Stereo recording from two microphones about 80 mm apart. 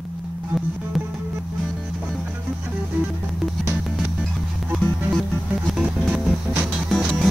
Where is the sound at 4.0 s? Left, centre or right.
Centre.